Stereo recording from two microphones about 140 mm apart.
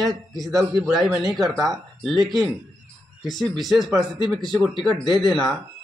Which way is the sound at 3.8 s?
30° right (ahead or behind).